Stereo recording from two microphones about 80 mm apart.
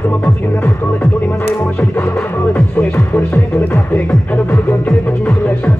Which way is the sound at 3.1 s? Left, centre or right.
Left.